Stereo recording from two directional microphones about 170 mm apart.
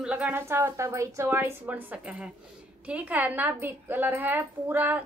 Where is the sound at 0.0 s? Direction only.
10° right (ahead or behind).